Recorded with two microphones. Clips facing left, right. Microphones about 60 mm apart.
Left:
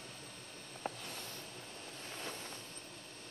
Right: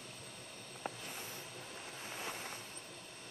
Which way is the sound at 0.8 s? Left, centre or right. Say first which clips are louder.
Left 2 dB; centre.